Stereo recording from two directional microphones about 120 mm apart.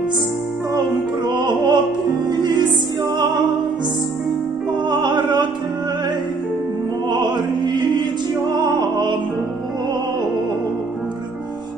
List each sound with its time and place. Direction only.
0.7 s music: 40° right (ahead or behind)
4.8 s music: 35° right (ahead or behind)
8.5 s music: 35° right (ahead or behind)